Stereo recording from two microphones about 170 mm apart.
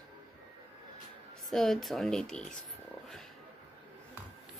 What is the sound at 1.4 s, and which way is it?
Speech, centre (ahead or behind).